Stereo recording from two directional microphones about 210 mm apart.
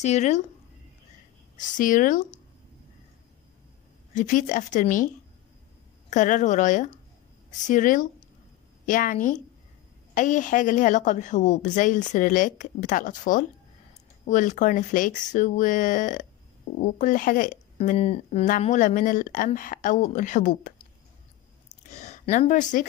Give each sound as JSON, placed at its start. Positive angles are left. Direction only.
{"t": 0.0, "sound": "speech", "side_deg": 35}
{"t": 1.6, "sound": "speech", "side_deg": 40}
{"t": 4.1, "sound": "speech", "side_deg": 35}
{"t": 21.6, "sound": "a sound", "side_deg": 35}